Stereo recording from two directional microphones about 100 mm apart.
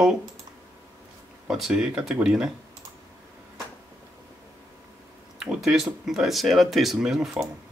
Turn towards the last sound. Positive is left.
turn(degrees=-5)  # may be behind; listen again after turning